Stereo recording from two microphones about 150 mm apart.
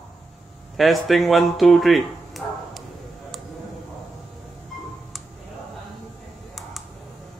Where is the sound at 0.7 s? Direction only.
Centre (ahead or behind).